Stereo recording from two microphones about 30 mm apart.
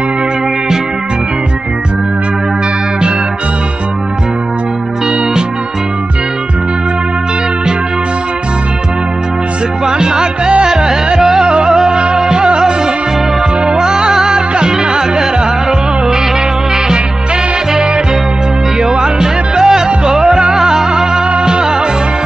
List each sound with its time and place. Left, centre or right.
9.8 s music: right
11.4 s music: right
11.7 s music: centre
18.8 s music: right